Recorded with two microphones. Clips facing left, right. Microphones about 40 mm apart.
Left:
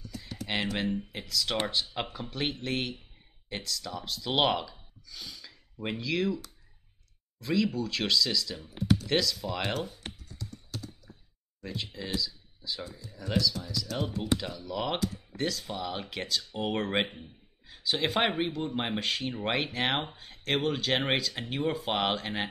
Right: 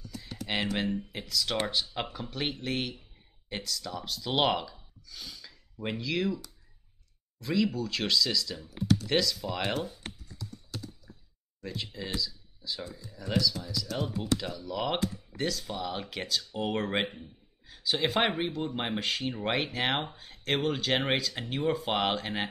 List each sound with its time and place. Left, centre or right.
0.1 s computer keyboard: centre
1.1 s speech: centre
8.5 s speech: left
8.9 s speech: centre
11.6 s speech: centre
12.2 s a sound: centre
13.2 s speech: centre